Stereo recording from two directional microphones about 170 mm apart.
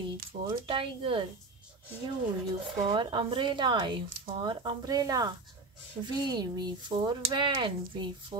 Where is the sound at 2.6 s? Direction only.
30° right (ahead or behind).